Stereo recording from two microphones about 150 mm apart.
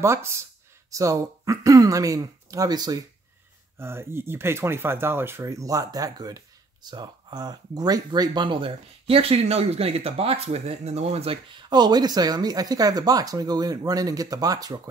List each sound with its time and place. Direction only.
0.0 s speech: 20° right (ahead or behind)